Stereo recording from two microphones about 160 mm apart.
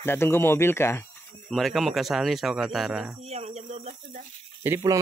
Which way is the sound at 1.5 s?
Centre (ahead or behind).